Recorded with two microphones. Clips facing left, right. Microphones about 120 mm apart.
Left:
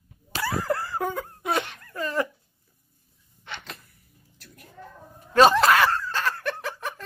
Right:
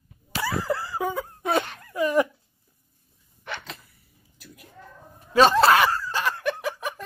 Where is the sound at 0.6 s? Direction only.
Centre (ahead or behind).